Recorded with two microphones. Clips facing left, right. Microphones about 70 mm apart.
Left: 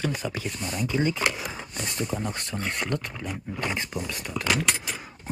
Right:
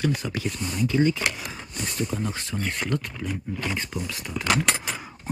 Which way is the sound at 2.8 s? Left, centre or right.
Centre.